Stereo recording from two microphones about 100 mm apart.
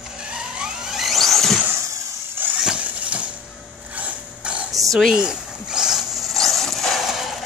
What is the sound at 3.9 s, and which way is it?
Printer, 15° right (ahead or behind).